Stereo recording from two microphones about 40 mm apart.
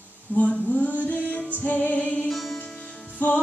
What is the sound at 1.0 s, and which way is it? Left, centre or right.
Music, left.